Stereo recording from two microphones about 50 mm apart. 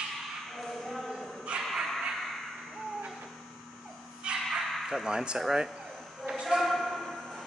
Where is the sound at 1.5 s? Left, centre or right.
Centre.